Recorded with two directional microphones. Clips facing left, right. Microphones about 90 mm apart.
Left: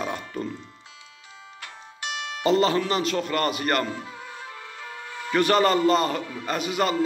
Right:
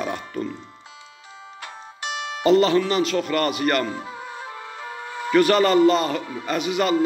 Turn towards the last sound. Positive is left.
turn(degrees=40)  # may be behind; listen again after turning